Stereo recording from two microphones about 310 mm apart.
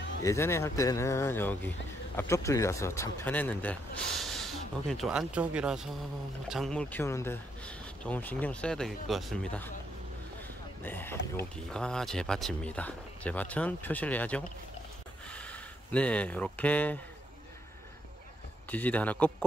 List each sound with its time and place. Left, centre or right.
0.2 s speech: centre
10.8 s speech: centre
18.7 s speech: centre